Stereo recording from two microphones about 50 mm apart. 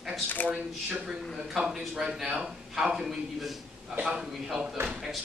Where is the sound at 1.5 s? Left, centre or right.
Centre.